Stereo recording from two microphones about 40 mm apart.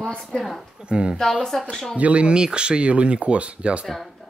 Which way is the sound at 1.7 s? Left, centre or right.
Centre.